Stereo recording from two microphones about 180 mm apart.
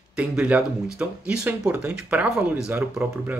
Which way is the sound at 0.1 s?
5° right (ahead or behind).